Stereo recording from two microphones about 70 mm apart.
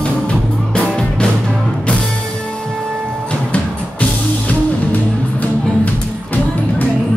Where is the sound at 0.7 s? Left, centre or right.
Centre.